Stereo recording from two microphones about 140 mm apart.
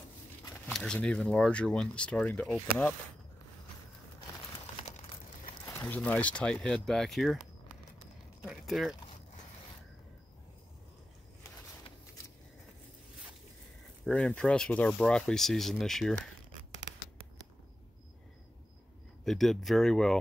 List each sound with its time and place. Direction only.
0.7 s speech: 5° left (ahead or behind)
5.7 s a sound: 15° left (ahead or behind)
5.9 s speech: 10° left (ahead or behind)
8.4 s speech: 5° right (ahead or behind)
14.0 s speech: 5° left (ahead or behind)
19.2 s speech: centre (ahead or behind)